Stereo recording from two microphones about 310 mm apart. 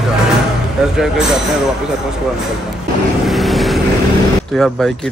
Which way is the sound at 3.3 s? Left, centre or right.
Centre.